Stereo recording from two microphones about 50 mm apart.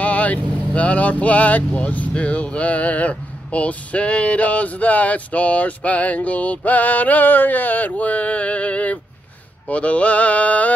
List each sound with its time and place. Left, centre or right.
0.0 s speech: left